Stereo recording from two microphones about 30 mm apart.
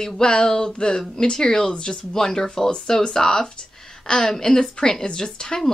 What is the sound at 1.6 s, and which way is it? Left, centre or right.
Speech, left.